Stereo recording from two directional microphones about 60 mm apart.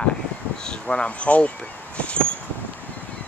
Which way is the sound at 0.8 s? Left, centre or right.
Left.